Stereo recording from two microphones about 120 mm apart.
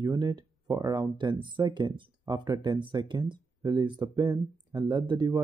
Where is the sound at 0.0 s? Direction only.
30° right (ahead or behind).